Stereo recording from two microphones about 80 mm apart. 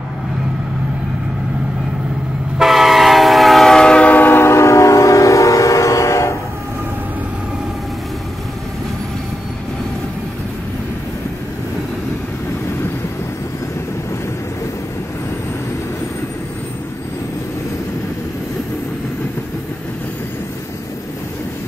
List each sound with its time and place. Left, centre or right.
2.6 s train: centre; by 6.3 s left